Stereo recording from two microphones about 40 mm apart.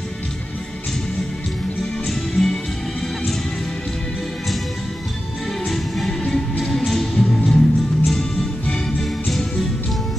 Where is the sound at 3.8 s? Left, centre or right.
Centre.